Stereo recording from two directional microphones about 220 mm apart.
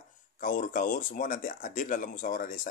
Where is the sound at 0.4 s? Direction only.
35° left (ahead or behind).